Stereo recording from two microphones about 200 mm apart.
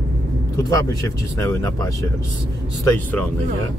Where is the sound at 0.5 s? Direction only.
15° left (ahead or behind).